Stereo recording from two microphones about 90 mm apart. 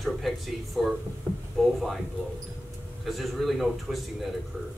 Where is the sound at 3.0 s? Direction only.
Centre (ahead or behind).